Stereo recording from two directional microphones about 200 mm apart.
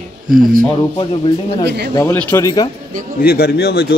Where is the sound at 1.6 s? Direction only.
55° right (ahead or behind).